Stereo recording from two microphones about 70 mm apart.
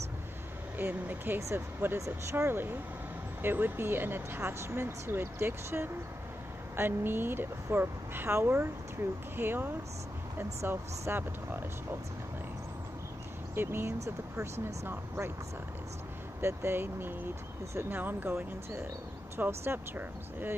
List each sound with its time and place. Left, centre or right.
0.7 s speech: right
10.7 s speech: right
13.6 s speech: right
14.0 s speech: right
16.3 s speech: right